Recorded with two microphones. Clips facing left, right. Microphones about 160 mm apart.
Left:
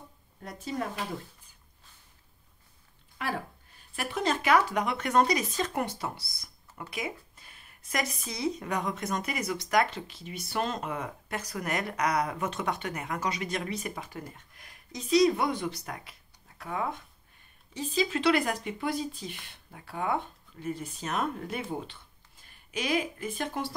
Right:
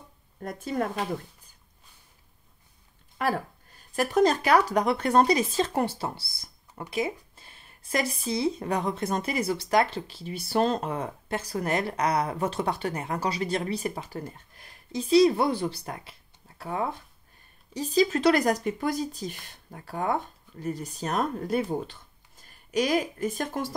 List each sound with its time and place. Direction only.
0.4 s speech: 50° right (ahead or behind)
3.2 s speech: 45° right (ahead or behind)